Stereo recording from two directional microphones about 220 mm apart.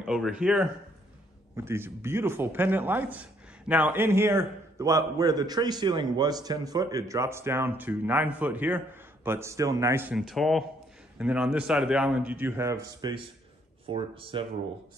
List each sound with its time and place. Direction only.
0.0 s a man's voice: 5° right (ahead or behind); by 14.4 s 25° right (ahead or behind)